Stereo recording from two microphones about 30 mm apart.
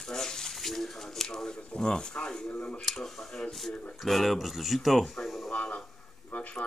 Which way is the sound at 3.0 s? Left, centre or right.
Centre.